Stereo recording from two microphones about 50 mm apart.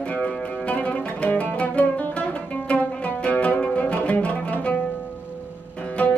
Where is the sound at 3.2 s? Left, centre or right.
Left.